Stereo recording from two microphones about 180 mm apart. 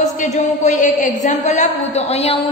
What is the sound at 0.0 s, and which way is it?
Speech, 40° left (ahead or behind).